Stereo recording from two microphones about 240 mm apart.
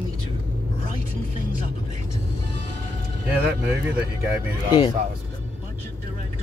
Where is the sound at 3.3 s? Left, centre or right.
Centre.